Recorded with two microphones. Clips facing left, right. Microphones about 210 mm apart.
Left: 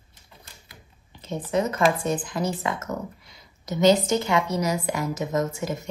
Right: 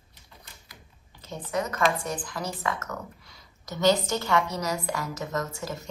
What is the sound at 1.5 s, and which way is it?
Speech, 25° left (ahead or behind).